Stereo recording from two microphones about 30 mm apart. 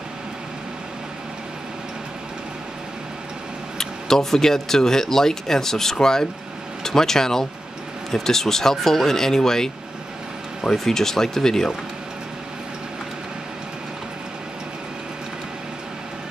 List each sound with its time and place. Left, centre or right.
3.7 s speech: centre